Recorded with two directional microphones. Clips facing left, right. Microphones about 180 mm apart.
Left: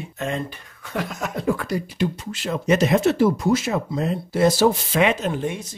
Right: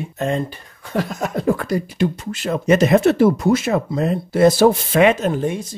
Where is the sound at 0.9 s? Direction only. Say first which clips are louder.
Right 5 dB; 35° right (ahead or behind).